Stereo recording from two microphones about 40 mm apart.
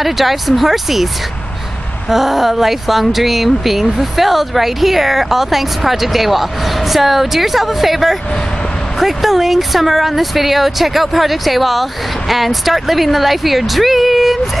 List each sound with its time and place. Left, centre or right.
0.0 s speech: centre
2.0 s speech: centre